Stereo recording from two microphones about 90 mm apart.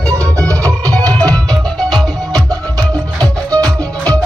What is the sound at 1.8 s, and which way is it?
Music, 50° right (ahead or behind).